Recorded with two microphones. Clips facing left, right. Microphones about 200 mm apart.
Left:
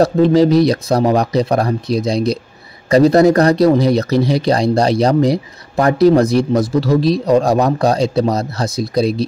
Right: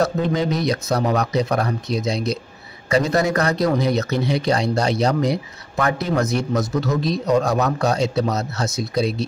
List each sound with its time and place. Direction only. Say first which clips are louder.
0.0 s speech: left 9 dB; 35° left (ahead or behind)